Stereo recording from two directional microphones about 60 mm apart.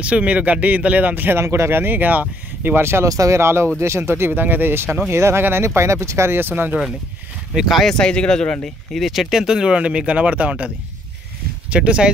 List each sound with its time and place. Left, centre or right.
0.0 s speech: right
1.4 s speech: right
3.1 s speech: right
3.3 s speech: right
5.1 s speech: right
5.4 s speech: right
5.8 s speech: right
6.5 s speech: right
7.5 s speech: centre
7.9 s speech: centre
8.6 s speech: centre; by 10.7 s right
11.7 s speech: centre